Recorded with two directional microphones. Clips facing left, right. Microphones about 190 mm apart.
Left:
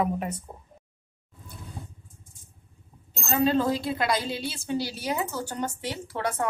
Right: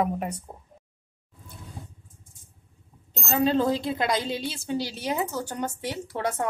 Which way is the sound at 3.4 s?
15° right (ahead or behind).